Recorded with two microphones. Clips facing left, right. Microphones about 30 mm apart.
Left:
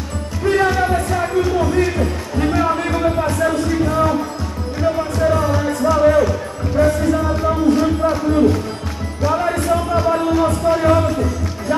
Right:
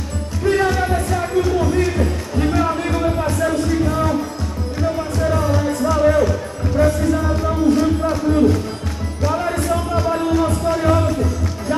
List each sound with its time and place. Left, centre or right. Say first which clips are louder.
0.5 s music: left 2 dB; centre
5.2 s music: left 2 dB; centre